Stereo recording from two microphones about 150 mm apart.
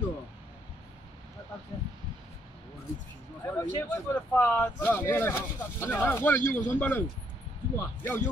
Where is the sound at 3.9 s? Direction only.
15° left (ahead or behind).